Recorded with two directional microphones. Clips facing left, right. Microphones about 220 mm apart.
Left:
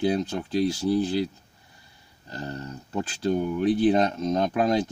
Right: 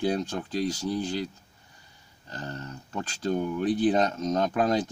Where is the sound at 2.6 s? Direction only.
15° left (ahead or behind).